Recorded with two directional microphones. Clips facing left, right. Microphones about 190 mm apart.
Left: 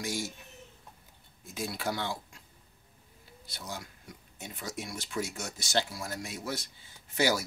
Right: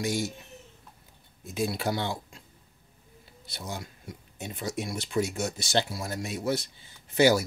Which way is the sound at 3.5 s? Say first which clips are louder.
Right 4 dB; 25° right (ahead or behind).